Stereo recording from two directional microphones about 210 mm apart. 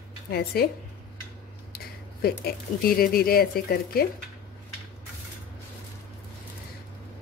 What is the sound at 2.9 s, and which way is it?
A woman's voice, 45° left (ahead or behind).